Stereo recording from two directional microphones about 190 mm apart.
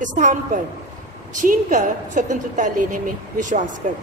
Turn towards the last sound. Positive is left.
turn(degrees=-40)  # may be behind; listen again after turning